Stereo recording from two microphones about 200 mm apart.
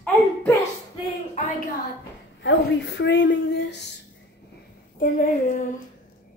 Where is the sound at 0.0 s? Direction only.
10° left (ahead or behind).